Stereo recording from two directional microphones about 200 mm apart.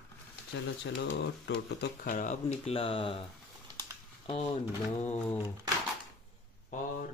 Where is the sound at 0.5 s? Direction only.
60° left (ahead or behind).